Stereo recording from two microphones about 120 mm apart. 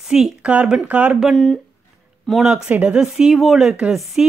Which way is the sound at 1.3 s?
5° left (ahead or behind).